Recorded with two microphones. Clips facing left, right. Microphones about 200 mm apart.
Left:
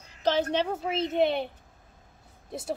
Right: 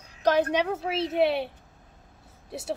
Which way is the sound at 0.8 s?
5° right (ahead or behind).